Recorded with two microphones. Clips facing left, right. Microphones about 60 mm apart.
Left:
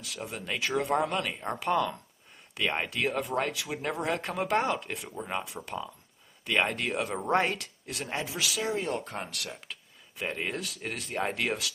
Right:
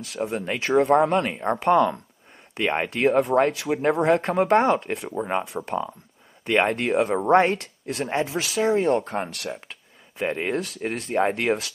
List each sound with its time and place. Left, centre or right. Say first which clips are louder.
0.0 s speech: right 11 dB; right